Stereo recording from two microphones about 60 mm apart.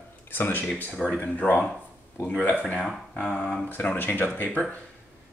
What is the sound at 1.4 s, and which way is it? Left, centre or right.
Speech, left.